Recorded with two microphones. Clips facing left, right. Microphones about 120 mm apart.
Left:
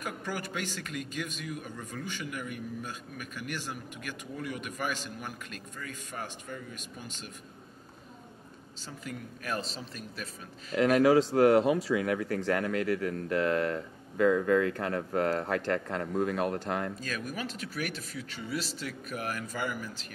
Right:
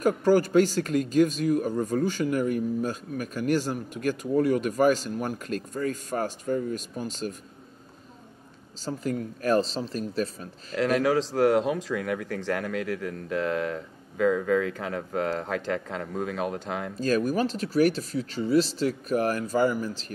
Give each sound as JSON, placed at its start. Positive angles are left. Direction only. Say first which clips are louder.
{"t": 0.0, "sound": "speech", "louder": "right 15 dB", "side_deg": -35}
{"t": 8.8, "sound": "speech", "louder": "right 12 dB", "side_deg": -35}
{"t": 10.8, "sound": "speech", "louder": "left 1 dB", "side_deg": 5}
{"t": 17.0, "sound": "speech", "louder": "right 12 dB", "side_deg": -35}